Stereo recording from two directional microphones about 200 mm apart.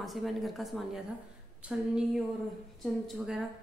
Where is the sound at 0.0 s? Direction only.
Centre (ahead or behind).